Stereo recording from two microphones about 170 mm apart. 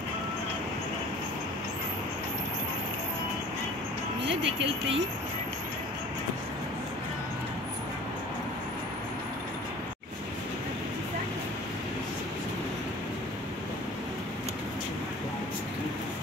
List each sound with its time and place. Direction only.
4.5 s speech: 90° right